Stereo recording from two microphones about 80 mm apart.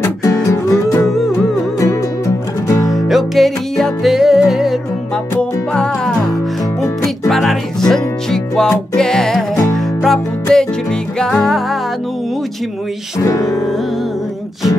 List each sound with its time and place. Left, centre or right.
0.0 s music: left
1.0 s music: centre
1.8 s music: left
2.9 s music: centre
5.4 s music: centre
7.2 s music: centre
13.2 s music: left